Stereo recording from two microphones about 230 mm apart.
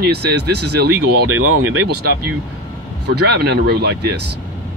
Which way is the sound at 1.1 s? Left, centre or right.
Right.